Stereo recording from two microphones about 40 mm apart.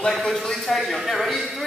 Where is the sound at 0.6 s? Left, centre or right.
Centre.